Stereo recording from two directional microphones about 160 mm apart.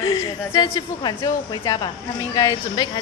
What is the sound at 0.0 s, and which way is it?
A woman's voice, 25° left (ahead or behind).